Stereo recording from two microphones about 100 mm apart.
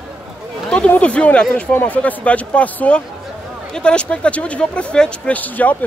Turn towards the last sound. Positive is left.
turn(degrees=15)  # may be behind; listen again after turning